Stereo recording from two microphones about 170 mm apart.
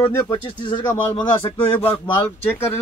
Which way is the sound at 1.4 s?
35° left (ahead or behind).